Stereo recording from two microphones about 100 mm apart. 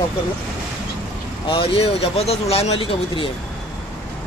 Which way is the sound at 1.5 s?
65° left (ahead or behind).